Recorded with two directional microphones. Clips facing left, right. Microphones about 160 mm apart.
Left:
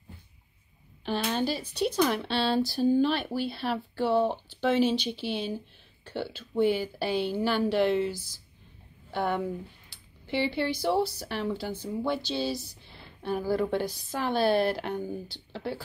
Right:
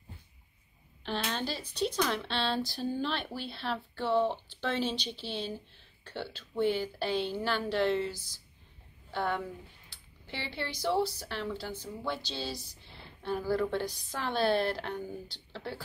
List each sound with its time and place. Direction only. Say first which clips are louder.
1.0 s speech: left 6 dB; 10° left (ahead or behind)